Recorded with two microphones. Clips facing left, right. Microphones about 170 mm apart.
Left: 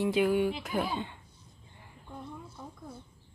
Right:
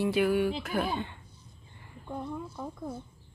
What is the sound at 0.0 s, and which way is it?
Speech, 20° left (ahead or behind).